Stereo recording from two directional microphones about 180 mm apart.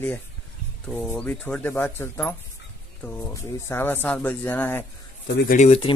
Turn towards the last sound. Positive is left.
turn(degrees=40)  # may be behind; listen again after turning